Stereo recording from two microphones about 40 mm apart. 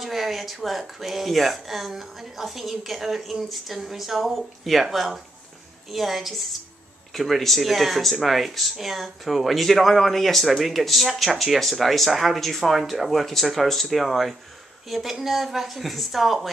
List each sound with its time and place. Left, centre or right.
0.0 s speech: centre